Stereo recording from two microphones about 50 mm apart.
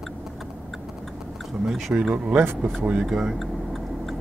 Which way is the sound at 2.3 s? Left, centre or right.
Right.